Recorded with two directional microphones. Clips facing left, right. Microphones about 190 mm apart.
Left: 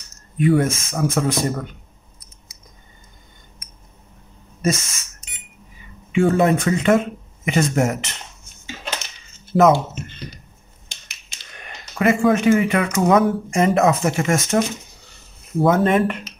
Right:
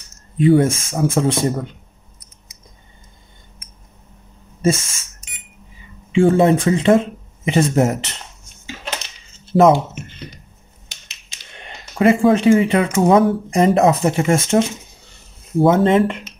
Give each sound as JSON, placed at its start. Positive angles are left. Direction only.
{"t": 0.4, "sound": "speech", "side_deg": -30}
{"t": 6.1, "sound": "speech", "side_deg": -25}
{"t": 9.5, "sound": "speech", "side_deg": -25}
{"t": 11.1, "sound": "speech", "side_deg": -25}
{"t": 15.6, "sound": "speech", "side_deg": -25}